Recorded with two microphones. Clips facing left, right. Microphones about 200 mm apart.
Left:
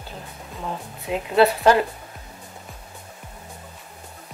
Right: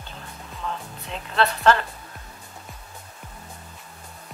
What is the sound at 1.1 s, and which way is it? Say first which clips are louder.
Speech: left 7 dB; 10° left (ahead or behind).